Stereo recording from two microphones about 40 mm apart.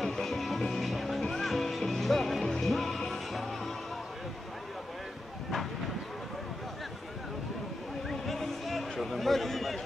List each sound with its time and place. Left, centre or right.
0.0 s music: centre
8.1 s a sound: centre
9.0 s chatter: centre